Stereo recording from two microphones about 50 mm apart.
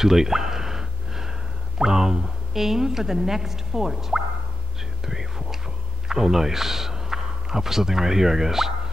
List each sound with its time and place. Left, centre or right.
0.0 s gasp: centre
1.8 s a woman's voice: centre
5.0 s whispering: centre
6.0 s speech: centre